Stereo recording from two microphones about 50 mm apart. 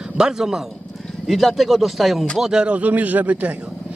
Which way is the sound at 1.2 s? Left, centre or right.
Centre.